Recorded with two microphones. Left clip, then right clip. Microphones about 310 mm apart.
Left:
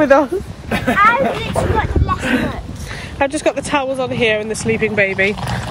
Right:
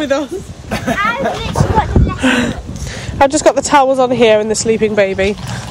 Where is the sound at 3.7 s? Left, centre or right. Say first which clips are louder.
Right 8 dB; centre.